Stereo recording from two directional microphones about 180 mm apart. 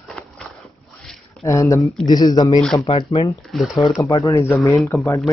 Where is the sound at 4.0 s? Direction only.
15° left (ahead or behind).